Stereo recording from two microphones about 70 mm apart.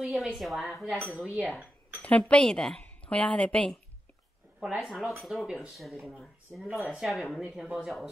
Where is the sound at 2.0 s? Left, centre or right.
Centre.